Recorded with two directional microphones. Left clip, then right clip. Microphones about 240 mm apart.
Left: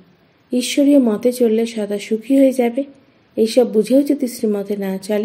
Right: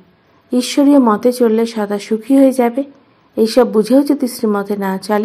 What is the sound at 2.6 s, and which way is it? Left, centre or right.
Speech, right.